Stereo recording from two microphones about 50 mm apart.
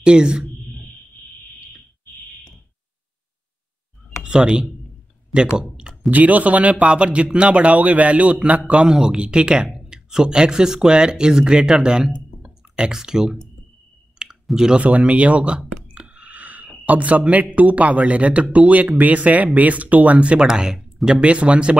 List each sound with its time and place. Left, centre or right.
0.0 s speech: centre
4.2 s speech: centre
6.0 s speech: right
8.8 s speech: centre
14.1 s clicking: centre
14.8 s speech: right
16.1 s a sound: right
16.8 s speech: right
20.4 s speech: centre
21.2 s speech: right